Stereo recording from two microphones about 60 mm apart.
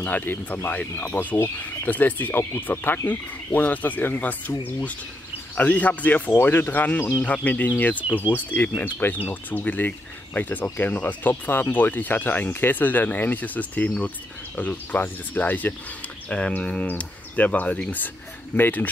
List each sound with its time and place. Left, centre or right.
0.0 s speech: left
7.2 s speech: left